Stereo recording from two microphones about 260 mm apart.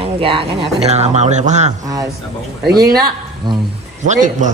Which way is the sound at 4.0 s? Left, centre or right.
Right.